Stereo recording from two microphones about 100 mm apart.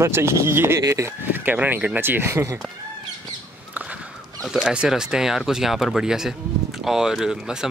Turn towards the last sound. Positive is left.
turn(degrees=-5)  # may be behind; listen again after turning